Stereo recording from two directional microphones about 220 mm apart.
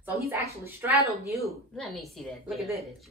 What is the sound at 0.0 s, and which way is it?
Speech, 10° right (ahead or behind).